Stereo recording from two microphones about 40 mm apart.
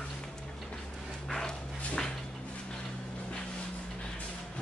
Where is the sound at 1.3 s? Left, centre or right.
Centre.